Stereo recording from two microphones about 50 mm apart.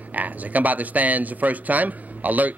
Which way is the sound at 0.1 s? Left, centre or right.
Right.